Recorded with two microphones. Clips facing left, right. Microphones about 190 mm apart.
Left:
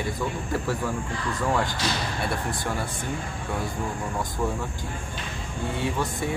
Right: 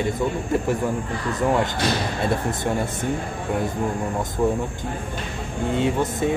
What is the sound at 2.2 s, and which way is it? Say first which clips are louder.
Speech: right 7 dB; 20° right (ahead or behind).